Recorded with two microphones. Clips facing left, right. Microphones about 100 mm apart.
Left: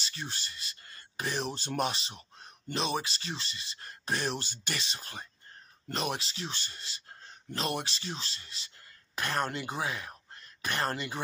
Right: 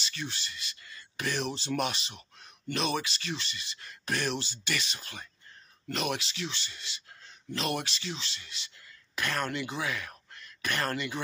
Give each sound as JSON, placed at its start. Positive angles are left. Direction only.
{"t": 0.0, "sound": "speech", "side_deg": 35}
{"t": 1.5, "sound": "speech", "side_deg": 45}
{"t": 1.9, "sound": "speech", "side_deg": 30}
{"t": 4.4, "sound": "speech", "side_deg": 45}
{"t": 4.7, "sound": "speech", "side_deg": 30}